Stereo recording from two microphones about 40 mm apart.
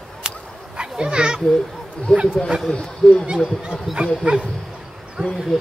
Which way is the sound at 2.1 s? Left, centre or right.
Left.